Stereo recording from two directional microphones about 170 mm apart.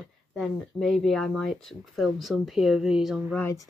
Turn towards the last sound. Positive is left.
turn(degrees=15)  # may be behind; listen again after turning